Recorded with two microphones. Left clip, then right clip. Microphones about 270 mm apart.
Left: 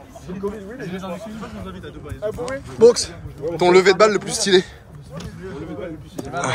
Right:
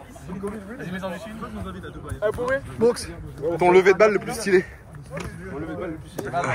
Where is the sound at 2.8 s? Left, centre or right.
Centre.